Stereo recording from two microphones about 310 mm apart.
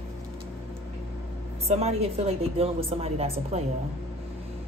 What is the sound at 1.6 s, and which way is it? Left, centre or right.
A woman's voice, centre.